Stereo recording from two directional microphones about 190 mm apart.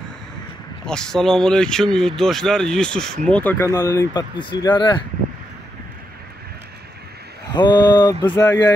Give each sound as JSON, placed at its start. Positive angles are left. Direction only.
{"t": 0.8, "sound": "speech", "side_deg": 5}
{"t": 7.5, "sound": "speech", "side_deg": 20}